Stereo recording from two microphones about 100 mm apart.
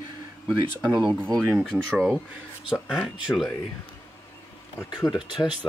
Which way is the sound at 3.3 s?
25° left (ahead or behind).